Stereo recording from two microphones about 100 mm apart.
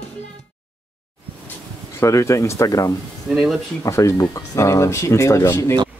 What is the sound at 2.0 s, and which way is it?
Speech, 30° left (ahead or behind).